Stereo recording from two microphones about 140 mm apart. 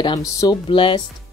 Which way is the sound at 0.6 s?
35° left (ahead or behind).